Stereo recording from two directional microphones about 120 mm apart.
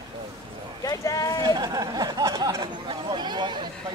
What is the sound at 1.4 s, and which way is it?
Speech, 35° right (ahead or behind).